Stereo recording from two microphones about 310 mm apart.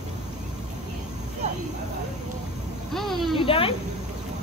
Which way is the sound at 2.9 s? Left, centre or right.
Centre.